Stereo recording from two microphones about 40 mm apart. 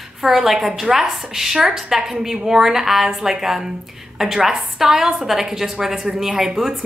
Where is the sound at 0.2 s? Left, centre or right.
Centre.